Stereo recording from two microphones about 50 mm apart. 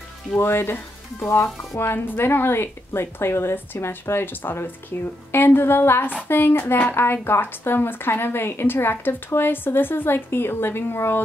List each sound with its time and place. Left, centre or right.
0.4 s speech: left
1.2 s music: left
1.8 s speech: left